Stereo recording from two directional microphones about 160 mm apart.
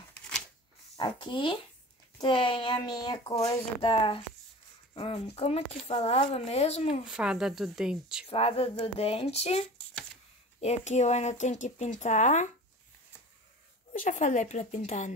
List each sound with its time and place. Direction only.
0.9 s speech: 30° left (ahead or behind)
7.1 s speech: 5° right (ahead or behind)
8.3 s speech: 35° left (ahead or behind)
13.9 s speech: 50° left (ahead or behind)